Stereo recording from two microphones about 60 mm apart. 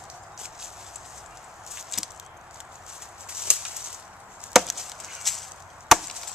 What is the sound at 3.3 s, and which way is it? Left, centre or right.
Bird flight, centre.